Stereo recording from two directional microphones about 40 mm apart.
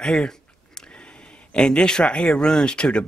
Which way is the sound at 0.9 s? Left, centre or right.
Left.